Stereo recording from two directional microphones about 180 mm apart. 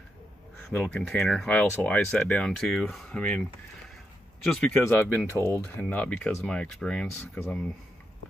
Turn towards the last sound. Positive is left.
turn(degrees=5)  # may be behind; listen again after turning